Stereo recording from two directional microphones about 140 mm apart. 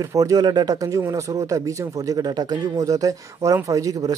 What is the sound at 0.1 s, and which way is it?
Speech, 25° right (ahead or behind).